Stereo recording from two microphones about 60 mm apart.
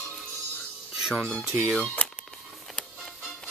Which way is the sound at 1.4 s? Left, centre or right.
Centre.